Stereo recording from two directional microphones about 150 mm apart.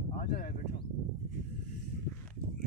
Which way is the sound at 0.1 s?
65° left (ahead or behind).